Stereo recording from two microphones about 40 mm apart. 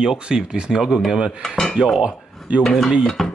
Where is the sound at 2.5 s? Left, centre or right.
Right.